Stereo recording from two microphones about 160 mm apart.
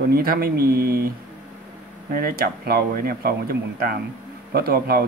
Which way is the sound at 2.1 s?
70° right (ahead or behind).